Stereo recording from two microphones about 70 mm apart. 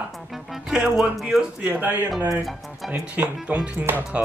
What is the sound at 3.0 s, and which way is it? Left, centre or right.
Speech, centre.